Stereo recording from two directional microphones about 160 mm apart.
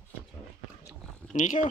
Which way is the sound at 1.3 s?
55° left (ahead or behind).